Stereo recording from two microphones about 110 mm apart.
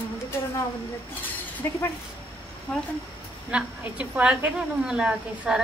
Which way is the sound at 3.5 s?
10° right (ahead or behind).